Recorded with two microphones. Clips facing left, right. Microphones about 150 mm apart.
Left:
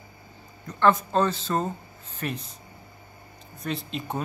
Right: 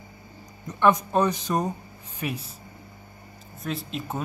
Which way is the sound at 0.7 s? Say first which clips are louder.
Even; 15° right (ahead or behind).